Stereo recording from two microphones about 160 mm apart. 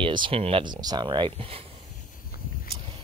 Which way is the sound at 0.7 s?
25° right (ahead or behind).